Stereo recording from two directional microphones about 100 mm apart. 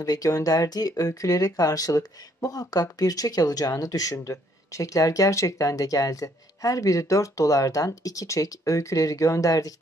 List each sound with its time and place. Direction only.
0.0 s speech: 35° left (ahead or behind)